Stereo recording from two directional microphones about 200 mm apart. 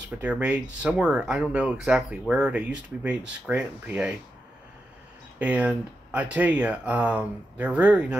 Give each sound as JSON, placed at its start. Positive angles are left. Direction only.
{"t": 0.2, "sound": "speech", "side_deg": -5}
{"t": 5.4, "sound": "speech", "side_deg": -5}